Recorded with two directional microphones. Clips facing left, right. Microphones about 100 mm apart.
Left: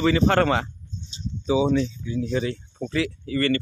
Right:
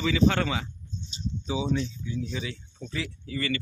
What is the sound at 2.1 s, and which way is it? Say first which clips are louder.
Speech: left 10 dB; 55° left (ahead or behind).